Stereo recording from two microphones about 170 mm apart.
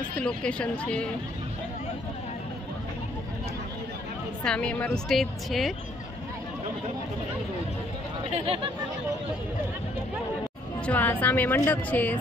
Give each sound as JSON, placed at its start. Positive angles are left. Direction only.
{"t": 0.2, "sound": "a woman's voice", "side_deg": 5}
{"t": 4.5, "sound": "a woman's voice", "side_deg": 5}
{"t": 8.3, "sound": "speech", "side_deg": -35}
{"t": 10.9, "sound": "a woman's voice", "side_deg": 10}